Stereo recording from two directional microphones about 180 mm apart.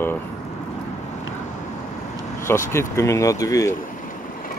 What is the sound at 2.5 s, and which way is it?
Speech, 15° left (ahead or behind).